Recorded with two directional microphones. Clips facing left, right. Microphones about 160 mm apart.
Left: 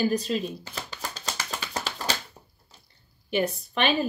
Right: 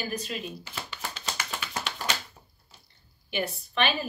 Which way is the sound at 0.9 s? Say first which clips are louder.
Left 1 dB; 40° left (ahead or behind).